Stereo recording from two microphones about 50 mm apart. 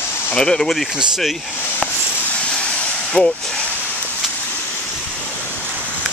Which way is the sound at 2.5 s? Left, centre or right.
Centre.